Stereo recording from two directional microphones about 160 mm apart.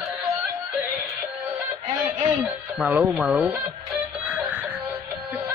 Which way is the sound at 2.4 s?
5° right (ahead or behind).